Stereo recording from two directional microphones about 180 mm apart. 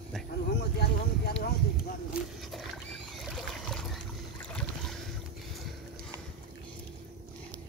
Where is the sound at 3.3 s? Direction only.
Centre (ahead or behind).